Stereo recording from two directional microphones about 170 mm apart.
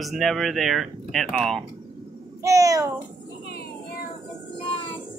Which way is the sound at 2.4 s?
20° right (ahead or behind).